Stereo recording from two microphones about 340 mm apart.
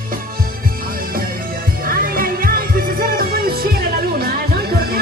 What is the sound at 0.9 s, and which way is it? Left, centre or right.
Music, right.